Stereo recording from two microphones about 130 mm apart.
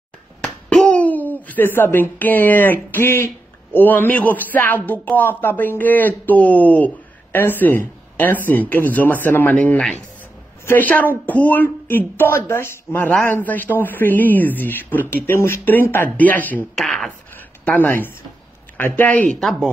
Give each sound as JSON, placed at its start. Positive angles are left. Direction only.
{"t": 0.7, "sound": "a man's voice", "side_deg": 5}
{"t": 16.7, "sound": "speech", "side_deg": 5}
{"t": 17.6, "sound": "a man's voice", "side_deg": 15}